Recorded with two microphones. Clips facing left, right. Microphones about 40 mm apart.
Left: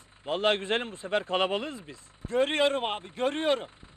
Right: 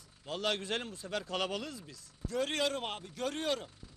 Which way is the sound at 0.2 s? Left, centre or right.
Left.